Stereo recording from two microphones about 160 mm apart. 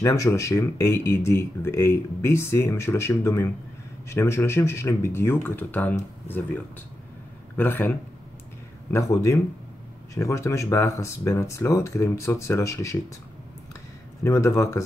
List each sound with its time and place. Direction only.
0.0 s speech: 20° left (ahead or behind)
7.5 s speech: 15° left (ahead or behind)
8.9 s speech: 20° left (ahead or behind)
14.2 s speech: 20° left (ahead or behind)